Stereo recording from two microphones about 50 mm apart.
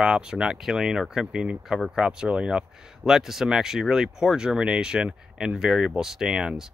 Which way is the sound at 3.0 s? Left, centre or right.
Centre.